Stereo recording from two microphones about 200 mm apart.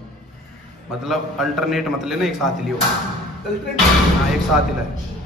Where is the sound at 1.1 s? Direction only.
Centre (ahead or behind).